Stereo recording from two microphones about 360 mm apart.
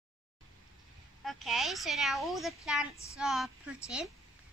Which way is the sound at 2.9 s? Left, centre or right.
Centre.